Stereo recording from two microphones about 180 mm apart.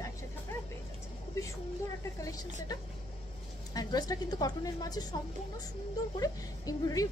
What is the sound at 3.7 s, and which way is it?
A woman's voice, 20° left (ahead or behind).